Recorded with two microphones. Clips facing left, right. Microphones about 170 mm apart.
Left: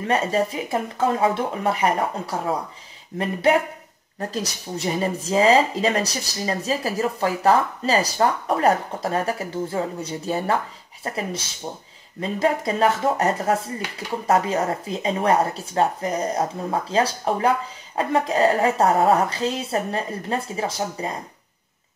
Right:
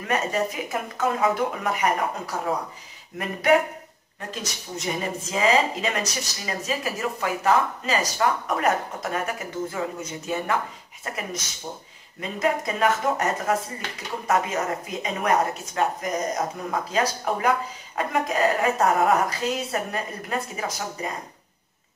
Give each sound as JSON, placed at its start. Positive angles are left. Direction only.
{"t": 0.0, "sound": "speech", "side_deg": 30}